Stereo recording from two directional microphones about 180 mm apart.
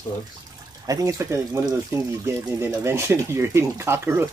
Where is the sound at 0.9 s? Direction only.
20° right (ahead or behind).